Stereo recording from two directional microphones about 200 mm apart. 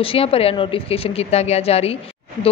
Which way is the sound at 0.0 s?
30° left (ahead or behind).